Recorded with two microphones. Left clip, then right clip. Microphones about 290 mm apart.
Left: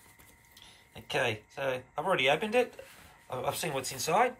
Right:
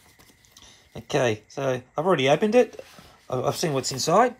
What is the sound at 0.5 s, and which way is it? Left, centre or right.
Speech, centre.